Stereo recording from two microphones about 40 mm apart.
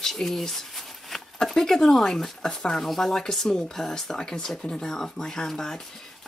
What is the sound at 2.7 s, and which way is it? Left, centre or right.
Speech, centre.